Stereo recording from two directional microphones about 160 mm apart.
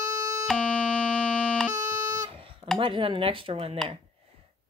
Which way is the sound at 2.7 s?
35° right (ahead or behind).